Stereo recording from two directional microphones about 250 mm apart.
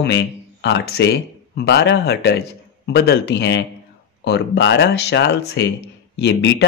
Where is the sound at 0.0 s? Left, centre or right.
Left.